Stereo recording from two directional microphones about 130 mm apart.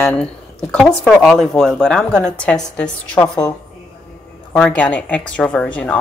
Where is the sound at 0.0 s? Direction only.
5° left (ahead or behind).